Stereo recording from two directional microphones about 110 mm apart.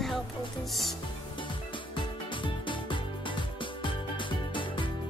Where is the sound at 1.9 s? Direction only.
50° left (ahead or behind).